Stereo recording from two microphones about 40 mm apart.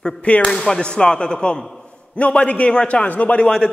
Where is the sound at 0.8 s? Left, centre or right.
Left.